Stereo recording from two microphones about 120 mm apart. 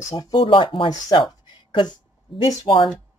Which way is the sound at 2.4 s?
45° left (ahead or behind).